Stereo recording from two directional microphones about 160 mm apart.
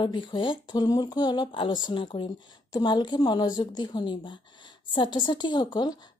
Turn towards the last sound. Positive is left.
turn(degrees=25)  # may be behind; listen again after turning